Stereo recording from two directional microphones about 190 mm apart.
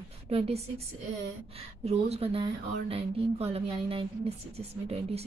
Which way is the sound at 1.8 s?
30° right (ahead or behind).